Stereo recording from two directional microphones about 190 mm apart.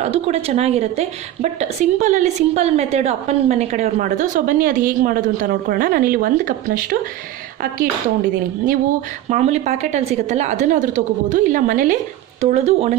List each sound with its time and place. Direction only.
0.0 s speech: 35° right (ahead or behind)
9.3 s speech: 35° right (ahead or behind)